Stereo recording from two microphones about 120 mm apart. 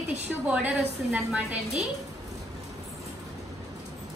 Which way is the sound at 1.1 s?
10° right (ahead or behind).